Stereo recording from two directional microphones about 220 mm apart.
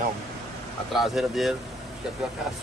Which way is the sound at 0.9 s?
Centre (ahead or behind).